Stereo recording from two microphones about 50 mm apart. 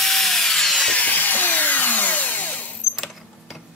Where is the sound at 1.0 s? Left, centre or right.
Left.